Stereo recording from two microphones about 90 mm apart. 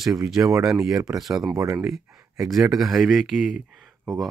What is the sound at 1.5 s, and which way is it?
Speech, 30° right (ahead or behind).